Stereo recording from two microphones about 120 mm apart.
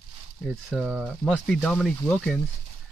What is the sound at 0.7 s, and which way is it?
Speech, 10° right (ahead or behind).